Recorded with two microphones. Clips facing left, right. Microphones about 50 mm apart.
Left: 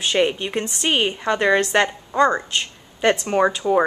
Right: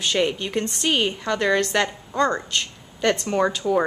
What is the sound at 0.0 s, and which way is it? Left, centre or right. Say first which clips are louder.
A woman's voice: left 3 dB; centre.